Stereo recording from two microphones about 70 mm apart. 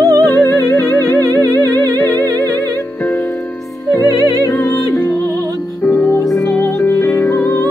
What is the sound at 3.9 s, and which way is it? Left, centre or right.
Music, left.